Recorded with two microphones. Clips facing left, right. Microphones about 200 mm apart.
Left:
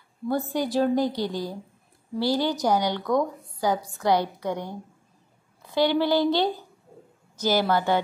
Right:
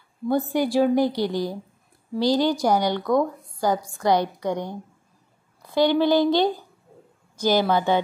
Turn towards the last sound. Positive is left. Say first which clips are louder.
# right 2 dB
turn(degrees=-20)  # may be behind; listen again after turning